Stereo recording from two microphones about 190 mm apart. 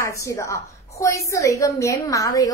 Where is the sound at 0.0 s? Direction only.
15° left (ahead or behind).